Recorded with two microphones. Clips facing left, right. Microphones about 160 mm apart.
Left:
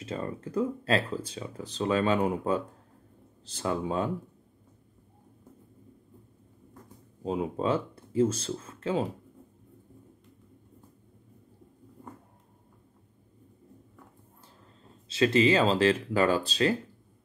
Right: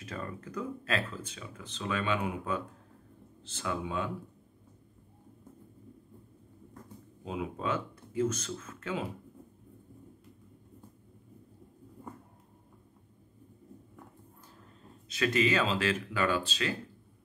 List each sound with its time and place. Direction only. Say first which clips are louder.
0.0 s speech: left 6 dB; 30° left (ahead or behind)
7.2 s speech: left 6 dB; 35° left (ahead or behind)
15.0 s speech: left 6 dB; 30° left (ahead or behind)